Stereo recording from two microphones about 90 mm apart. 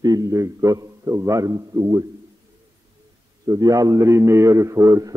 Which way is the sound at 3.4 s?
40° right (ahead or behind).